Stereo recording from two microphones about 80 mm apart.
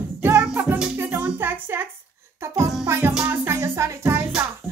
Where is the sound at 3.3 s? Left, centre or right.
Right.